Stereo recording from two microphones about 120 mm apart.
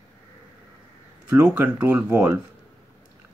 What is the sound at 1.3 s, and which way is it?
Speech, 15° right (ahead or behind).